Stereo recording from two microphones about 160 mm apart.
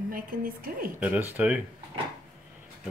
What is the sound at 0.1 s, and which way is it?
Speech, 60° right (ahead or behind).